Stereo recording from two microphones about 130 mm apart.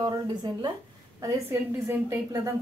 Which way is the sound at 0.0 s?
30° right (ahead or behind).